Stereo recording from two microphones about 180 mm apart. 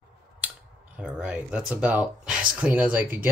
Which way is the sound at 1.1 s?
5° right (ahead or behind).